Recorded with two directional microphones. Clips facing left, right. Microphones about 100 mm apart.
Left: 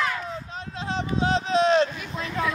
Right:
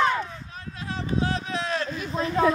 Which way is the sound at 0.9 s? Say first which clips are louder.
Left 3 dB; 20° left (ahead or behind).